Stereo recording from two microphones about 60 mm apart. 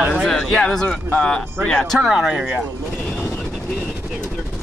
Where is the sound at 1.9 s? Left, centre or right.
Centre.